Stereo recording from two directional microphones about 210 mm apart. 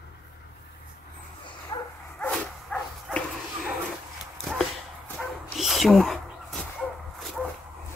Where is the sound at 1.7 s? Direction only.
20° left (ahead or behind).